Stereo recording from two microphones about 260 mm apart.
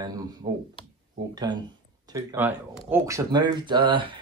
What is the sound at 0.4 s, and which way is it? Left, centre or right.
Speech, right.